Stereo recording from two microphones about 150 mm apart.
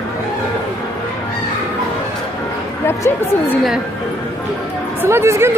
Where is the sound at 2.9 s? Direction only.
15° left (ahead or behind).